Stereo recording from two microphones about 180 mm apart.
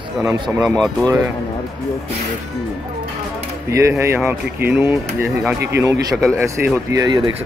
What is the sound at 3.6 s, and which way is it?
Speech, 15° right (ahead or behind).